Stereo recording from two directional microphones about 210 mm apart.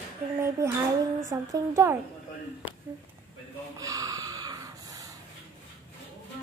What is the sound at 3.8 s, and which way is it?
Snort, 15° right (ahead or behind).